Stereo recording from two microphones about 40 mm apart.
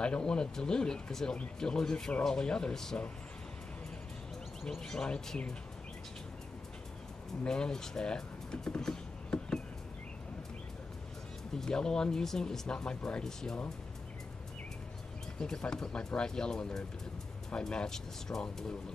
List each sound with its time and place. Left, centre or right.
0.0 s speech: left
4.6 s speech: centre
5.0 s speech: left
7.4 s speech: left
11.5 s speech: centre
15.3 s speech: centre